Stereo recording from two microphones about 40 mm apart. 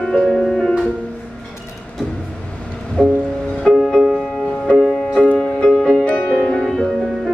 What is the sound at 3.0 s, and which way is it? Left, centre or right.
Music, centre.